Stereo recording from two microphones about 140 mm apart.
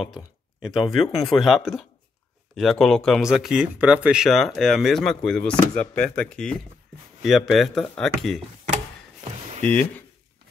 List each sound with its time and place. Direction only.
0.0 s speech: centre (ahead or behind)
9.3 s a sound: 45° right (ahead or behind)
9.7 s speech: 10° left (ahead or behind)